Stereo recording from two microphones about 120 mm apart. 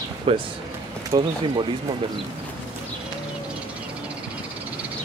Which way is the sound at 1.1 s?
30° right (ahead or behind).